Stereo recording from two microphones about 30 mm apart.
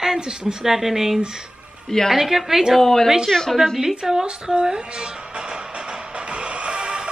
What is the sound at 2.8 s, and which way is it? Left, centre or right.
Speech, centre.